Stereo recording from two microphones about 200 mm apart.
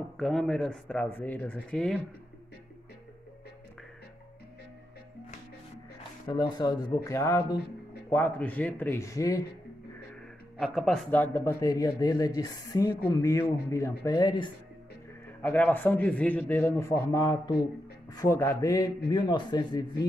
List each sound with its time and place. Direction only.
0.2 s speech: centre (ahead or behind)
6.2 s a man's voice: 20° left (ahead or behind)
10.6 s a man's voice: centre (ahead or behind); by 14.5 s 20° left (ahead or behind)
15.4 s a man's voice: 5° left (ahead or behind)